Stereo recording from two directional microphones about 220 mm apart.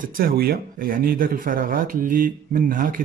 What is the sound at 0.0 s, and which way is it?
Speech, 40° right (ahead or behind).